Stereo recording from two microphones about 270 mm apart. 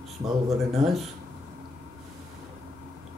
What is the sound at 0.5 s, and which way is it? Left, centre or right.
Speech, right.